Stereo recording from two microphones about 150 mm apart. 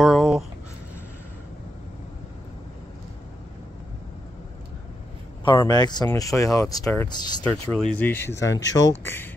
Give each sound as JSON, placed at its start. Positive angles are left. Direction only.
{"t": 0.0, "sound": "a sound", "side_deg": 0}
{"t": 5.4, "sound": "speech", "side_deg": 30}
{"t": 7.1, "sound": "speech", "side_deg": 30}
{"t": 7.4, "sound": "speech", "side_deg": 10}